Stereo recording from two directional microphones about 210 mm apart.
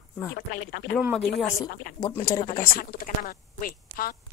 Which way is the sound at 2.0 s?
15° left (ahead or behind).